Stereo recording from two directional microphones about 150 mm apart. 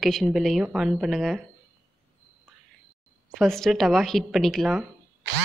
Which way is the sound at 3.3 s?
Centre (ahead or behind).